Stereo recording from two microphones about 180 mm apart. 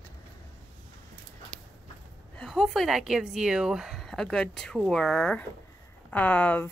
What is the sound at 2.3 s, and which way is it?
Speech, centre (ahead or behind).